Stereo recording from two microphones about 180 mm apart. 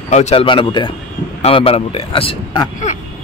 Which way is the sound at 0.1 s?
40° left (ahead or behind).